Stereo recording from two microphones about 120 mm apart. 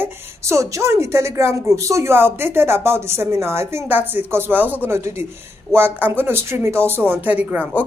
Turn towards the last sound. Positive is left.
turn(degrees=-15)  # may be behind; listen again after turning